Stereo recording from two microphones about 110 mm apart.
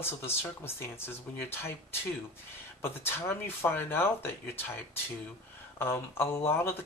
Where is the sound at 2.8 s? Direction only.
20° left (ahead or behind).